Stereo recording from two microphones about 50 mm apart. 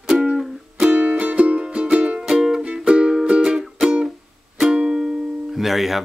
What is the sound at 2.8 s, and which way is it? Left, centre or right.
Music, centre.